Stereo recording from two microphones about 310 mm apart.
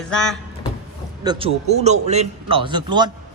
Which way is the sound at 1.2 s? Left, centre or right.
Centre.